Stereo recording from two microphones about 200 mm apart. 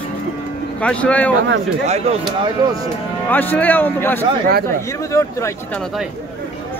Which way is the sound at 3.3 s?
10° left (ahead or behind).